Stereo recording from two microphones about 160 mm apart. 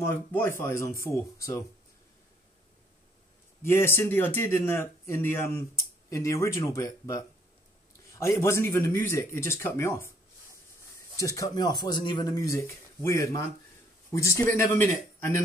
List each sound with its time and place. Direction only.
0.1 s speech: 15° left (ahead or behind)
3.6 s speech: 15° left (ahead or behind)
11.1 s speech: 20° left (ahead or behind)